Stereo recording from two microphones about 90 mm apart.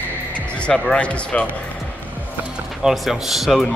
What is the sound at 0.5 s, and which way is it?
Speech, 10° left (ahead or behind).